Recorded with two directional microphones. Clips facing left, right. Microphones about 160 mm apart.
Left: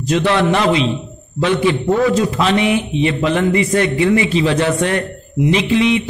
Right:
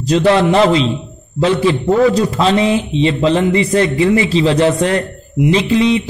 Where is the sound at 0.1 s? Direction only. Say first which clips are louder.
Right 4 dB; 35° right (ahead or behind).